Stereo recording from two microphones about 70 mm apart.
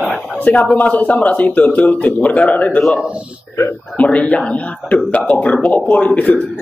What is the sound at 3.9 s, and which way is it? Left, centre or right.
Speech, centre.